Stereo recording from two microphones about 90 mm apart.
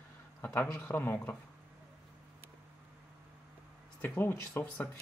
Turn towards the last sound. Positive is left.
turn(degrees=25)  # may be behind; listen again after turning